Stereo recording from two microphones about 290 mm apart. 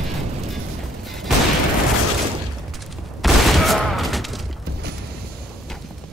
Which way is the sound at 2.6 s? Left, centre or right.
Centre.